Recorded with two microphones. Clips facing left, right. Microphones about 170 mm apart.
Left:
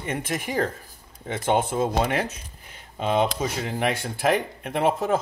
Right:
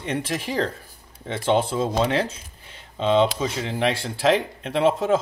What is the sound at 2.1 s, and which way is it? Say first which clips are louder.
Speech: right 3 dB; 30° right (ahead or behind).